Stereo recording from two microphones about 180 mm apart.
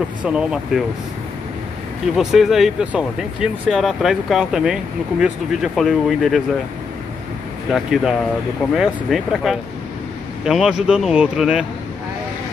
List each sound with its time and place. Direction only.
0.2 s speech: 5° right (ahead or behind)
2.1 s speech: centre (ahead or behind)
7.7 s speech: centre (ahead or behind)